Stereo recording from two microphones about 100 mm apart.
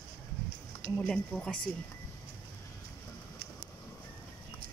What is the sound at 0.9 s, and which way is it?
Speech, 10° left (ahead or behind).